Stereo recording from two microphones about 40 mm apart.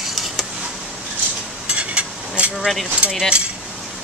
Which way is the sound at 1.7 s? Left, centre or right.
Right.